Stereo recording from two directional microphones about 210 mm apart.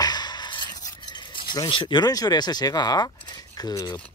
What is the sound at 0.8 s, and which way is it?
Filing, 20° left (ahead or behind).